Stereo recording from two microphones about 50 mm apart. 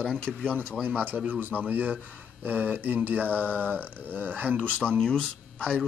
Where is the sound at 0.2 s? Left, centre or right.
Centre.